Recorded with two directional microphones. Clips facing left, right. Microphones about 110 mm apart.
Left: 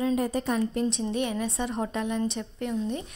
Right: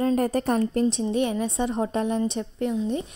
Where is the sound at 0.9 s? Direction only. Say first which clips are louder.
Right 4 dB; 30° right (ahead or behind).